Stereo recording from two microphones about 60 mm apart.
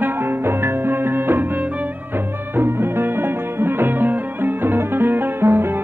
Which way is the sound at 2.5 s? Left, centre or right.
Right.